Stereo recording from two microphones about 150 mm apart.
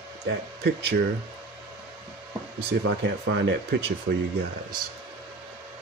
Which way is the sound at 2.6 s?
90° right.